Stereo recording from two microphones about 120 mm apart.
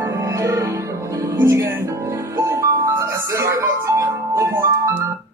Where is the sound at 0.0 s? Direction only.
25° right (ahead or behind).